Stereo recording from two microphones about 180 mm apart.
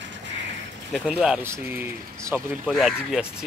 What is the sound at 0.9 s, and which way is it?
Speech, centre (ahead or behind).